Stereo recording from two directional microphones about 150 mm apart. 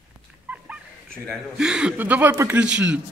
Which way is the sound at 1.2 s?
Centre (ahead or behind).